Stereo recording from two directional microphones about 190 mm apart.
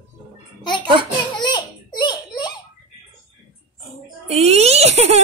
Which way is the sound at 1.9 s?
20° left (ahead or behind).